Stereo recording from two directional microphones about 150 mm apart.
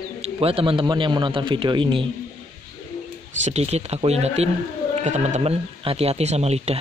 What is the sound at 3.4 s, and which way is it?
Speech, 45° right (ahead or behind).